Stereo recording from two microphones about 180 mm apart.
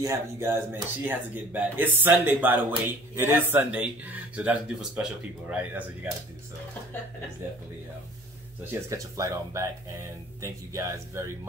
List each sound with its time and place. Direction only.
0.0 s speech: 15° right (ahead or behind)
8.6 s speech: 15° right (ahead or behind)